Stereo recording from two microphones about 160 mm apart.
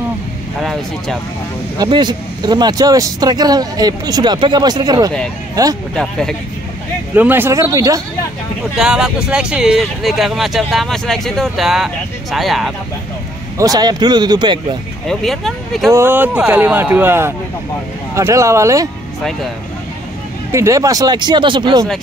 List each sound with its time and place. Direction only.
0.6 s speech: centre (ahead or behind)
1.8 s speech: 30° right (ahead or behind)
5.9 s speech: 5° left (ahead or behind)
7.2 s speech: 10° right (ahead or behind)
8.7 s speech: 5° right (ahead or behind)
13.6 s speech: 25° right (ahead or behind)
15.0 s speech: centre (ahead or behind)
15.9 s speech: 15° right (ahead or behind)
20.5 s speech: 20° right (ahead or behind)